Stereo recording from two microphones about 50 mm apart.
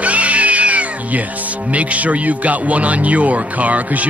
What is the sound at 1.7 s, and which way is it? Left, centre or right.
Speech, right.